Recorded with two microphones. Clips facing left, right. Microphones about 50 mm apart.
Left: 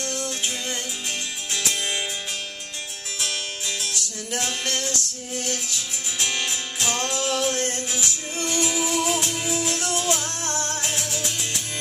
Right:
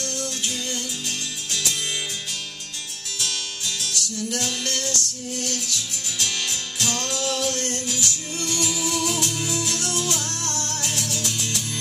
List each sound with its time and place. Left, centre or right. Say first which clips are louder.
0.0 s music: left 1 dB; left
3.2 s music: left 1 dB; left